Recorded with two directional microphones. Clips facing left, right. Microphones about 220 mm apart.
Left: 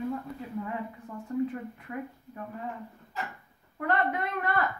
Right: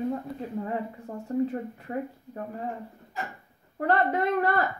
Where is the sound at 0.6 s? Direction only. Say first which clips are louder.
Right 4 dB; 35° right (ahead or behind).